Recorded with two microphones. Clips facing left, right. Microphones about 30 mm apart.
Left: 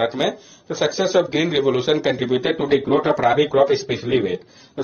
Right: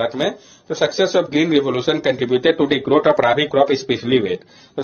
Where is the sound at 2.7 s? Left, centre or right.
Right.